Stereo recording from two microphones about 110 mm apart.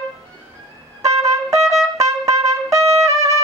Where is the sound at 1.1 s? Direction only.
30° right (ahead or behind).